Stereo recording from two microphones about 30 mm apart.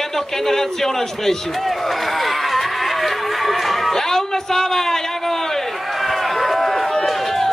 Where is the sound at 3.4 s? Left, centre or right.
Centre.